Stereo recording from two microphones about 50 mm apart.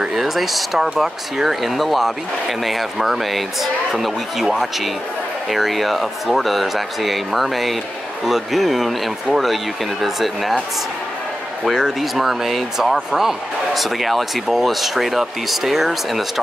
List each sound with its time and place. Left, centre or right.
0.1 s speech: centre
12.0 s speech: centre